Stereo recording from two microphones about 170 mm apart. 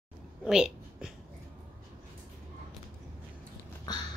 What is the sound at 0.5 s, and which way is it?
Speech, 5° right (ahead or behind).